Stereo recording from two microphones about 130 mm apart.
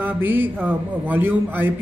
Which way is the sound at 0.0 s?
15° right (ahead or behind).